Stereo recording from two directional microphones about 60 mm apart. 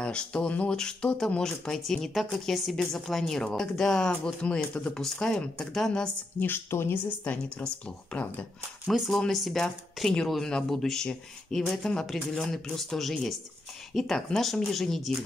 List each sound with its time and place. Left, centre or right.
0.0 s speech: centre
0.7 s speech: centre
6.4 s a woman's voice: left
7.5 s speech: centre
8.9 s speech: centre